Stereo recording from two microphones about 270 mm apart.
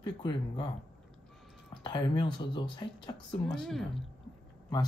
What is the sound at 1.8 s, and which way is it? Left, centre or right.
Speech, centre.